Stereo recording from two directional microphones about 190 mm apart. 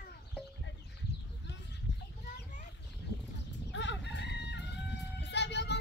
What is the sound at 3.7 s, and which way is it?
Chicken, 70° left (ahead or behind).